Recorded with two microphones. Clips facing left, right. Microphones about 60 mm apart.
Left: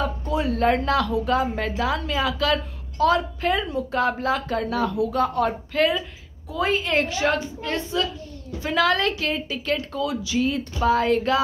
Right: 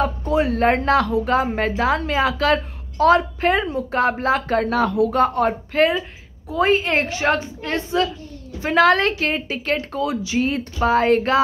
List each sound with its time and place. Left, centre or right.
0.3 s a woman's voice: right
5.3 s a woman's voice: right